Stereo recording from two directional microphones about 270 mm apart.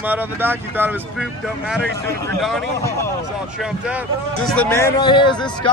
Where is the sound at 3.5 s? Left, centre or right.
Centre.